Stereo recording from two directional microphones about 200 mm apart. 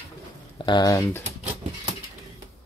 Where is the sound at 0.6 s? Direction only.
20° left (ahead or behind).